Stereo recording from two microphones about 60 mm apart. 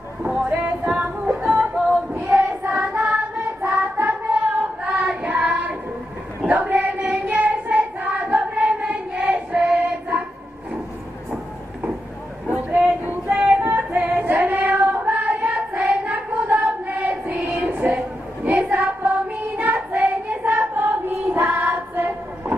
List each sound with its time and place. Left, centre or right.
0.2 s music: right
2.2 s child singing: right
6.5 s female singing: right
7.0 s child singing: right
12.4 s a sound: right
13.0 s child singing: right
13.6 s female singing: right
15.0 s child singing: right
21.3 s music: right